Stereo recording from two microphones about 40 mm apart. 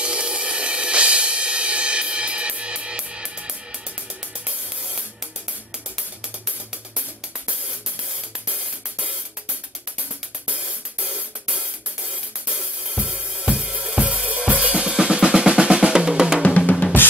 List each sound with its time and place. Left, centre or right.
0.0 s music: right
10.5 s music: right
12.1 s cymbal: centre
14.1 s drum kit: right
14.8 s drum kit: centre
15.3 s drum: right
16.4 s drum kit: left